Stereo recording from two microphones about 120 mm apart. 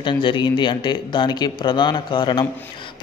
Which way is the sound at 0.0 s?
40° left (ahead or behind).